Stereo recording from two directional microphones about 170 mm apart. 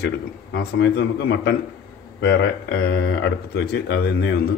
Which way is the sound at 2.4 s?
90° left.